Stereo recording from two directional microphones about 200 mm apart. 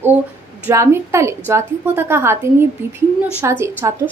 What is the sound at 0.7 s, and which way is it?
A woman's voice, 15° right (ahead or behind).